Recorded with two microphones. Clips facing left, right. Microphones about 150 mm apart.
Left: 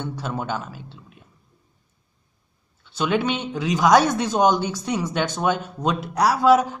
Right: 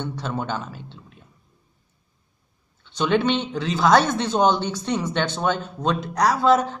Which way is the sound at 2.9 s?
5° left (ahead or behind).